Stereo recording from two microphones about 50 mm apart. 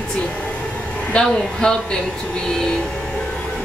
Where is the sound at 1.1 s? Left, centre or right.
Centre.